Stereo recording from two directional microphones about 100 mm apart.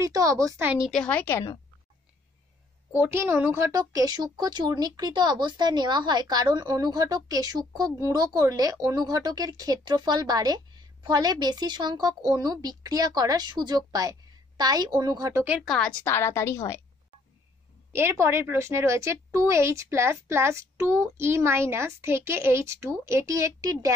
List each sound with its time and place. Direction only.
0.0 s speech: 35° right (ahead or behind)
0.9 s a woman's voice: 10° left (ahead or behind)
3.0 s a woman's voice: 25° right (ahead or behind); by 15.2 s 45° right (ahead or behind)
15.6 s a woman's voice: centre (ahead or behind)
16.1 s a woman's voice: 25° left (ahead or behind)
17.9 s a woman's voice: 25° right (ahead or behind)